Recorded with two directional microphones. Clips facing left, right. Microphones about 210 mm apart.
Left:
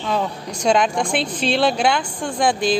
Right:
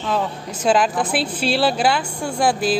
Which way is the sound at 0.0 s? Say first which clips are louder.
Even; centre (ahead or behind).